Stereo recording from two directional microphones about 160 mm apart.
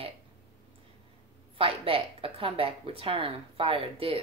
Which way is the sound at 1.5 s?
35° right (ahead or behind).